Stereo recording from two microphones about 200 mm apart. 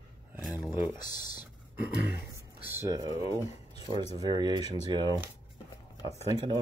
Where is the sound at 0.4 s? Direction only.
5° right (ahead or behind).